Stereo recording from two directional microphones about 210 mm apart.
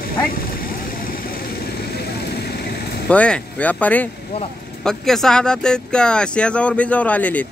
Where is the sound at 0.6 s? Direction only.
45° left (ahead or behind).